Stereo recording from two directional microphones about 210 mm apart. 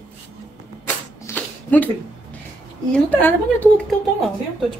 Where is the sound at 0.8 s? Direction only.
10° left (ahead or behind).